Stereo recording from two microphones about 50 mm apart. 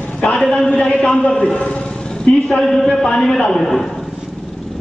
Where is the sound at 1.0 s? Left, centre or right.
Left.